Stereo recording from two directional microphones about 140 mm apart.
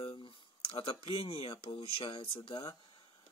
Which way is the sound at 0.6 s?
40° left (ahead or behind).